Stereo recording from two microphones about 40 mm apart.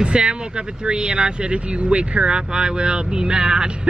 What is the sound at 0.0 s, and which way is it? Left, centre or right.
A woman's voice, right.